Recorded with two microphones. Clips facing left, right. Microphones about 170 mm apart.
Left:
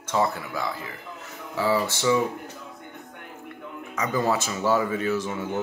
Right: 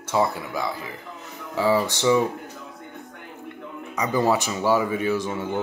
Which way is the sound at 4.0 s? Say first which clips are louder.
Right 3 dB; 15° right (ahead or behind).